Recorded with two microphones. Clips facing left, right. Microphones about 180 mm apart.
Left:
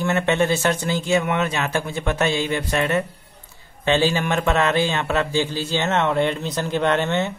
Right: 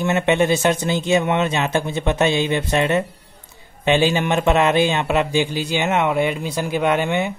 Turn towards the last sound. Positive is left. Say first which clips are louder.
# right 1 dB
turn(degrees=-10)  # may be behind; listen again after turning